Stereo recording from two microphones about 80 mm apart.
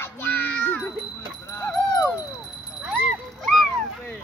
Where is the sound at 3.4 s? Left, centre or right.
Centre.